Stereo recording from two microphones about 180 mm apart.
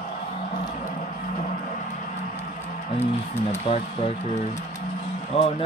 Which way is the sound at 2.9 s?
40° left (ahead or behind).